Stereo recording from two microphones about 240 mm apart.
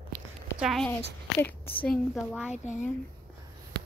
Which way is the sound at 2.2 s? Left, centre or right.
Centre.